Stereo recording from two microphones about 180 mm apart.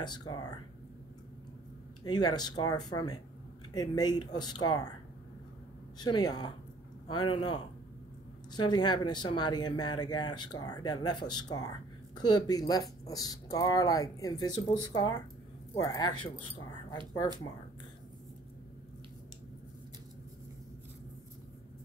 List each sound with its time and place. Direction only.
0.0 s speech: 25° left (ahead or behind)
2.0 s speech: 20° left (ahead or behind)
5.9 s speech: 20° left (ahead or behind)